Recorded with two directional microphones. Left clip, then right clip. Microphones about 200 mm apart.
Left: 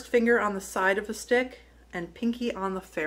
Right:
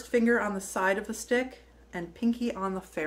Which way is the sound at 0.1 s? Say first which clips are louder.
Left 3 dB; centre (ahead or behind).